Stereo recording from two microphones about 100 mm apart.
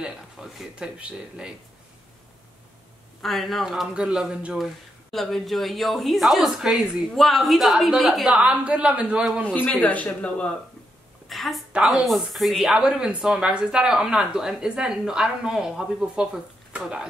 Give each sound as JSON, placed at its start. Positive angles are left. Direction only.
{"t": 0.0, "sound": "speech", "side_deg": -5}
{"t": 3.2, "sound": "a woman's voice", "side_deg": 0}
{"t": 5.1, "sound": "a woman's voice", "side_deg": 0}
{"t": 9.5, "sound": "a man's voice", "side_deg": 10}
{"t": 11.2, "sound": "a sound", "side_deg": 0}
{"t": 11.7, "sound": "speech", "side_deg": -10}